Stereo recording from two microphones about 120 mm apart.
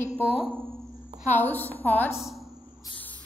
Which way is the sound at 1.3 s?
15° left (ahead or behind).